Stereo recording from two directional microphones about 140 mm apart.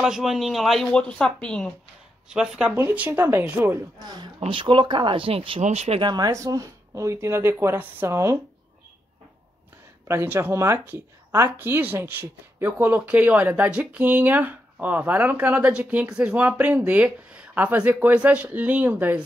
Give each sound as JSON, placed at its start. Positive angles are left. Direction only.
{"t": 0.0, "sound": "a man's voice", "side_deg": -5}
{"t": 2.2, "sound": "a man's voice", "side_deg": -5}
{"t": 4.4, "sound": "speech", "side_deg": -40}
{"t": 5.6, "sound": "speech", "side_deg": -50}
{"t": 6.0, "sound": "speech", "side_deg": -30}
{"t": 10.0, "sound": "speech", "side_deg": -15}